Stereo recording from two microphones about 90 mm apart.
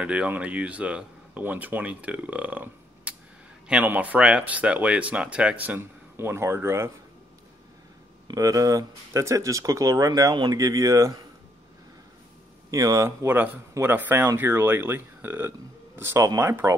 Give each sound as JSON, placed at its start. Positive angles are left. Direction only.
{"t": 0.0, "sound": "speech", "side_deg": -15}
{"t": 8.3, "sound": "speech", "side_deg": -40}
{"t": 12.7, "sound": "speech", "side_deg": -40}